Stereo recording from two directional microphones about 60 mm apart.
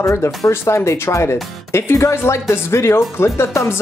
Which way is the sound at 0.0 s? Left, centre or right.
Left.